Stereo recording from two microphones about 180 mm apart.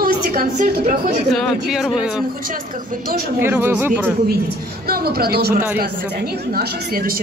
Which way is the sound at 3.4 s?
10° right (ahead or behind).